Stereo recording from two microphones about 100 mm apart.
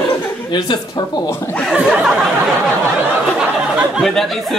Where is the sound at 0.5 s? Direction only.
45° left (ahead or behind).